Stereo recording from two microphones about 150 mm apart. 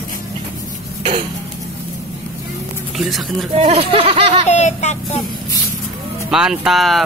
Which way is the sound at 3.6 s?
40° right (ahead or behind).